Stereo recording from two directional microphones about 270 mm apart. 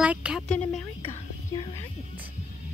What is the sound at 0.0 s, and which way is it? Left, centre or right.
Speech, centre.